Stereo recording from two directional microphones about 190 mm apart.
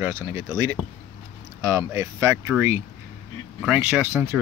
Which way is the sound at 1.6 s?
15° right (ahead or behind).